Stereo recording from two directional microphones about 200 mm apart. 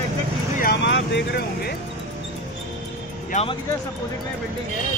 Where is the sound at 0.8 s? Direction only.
60° left (ahead or behind).